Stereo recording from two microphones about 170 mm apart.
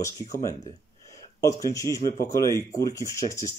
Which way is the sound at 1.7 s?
20° left (ahead or behind).